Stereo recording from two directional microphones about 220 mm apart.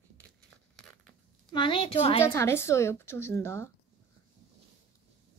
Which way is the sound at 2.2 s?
10° left (ahead or behind).